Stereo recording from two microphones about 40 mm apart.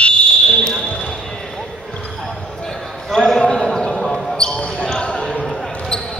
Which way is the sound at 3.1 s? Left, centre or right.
Centre.